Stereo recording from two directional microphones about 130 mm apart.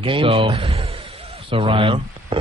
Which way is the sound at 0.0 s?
45° right (ahead or behind).